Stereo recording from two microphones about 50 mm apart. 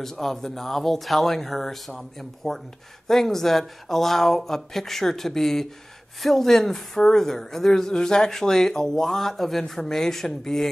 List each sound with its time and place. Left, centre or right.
0.0 s speech: centre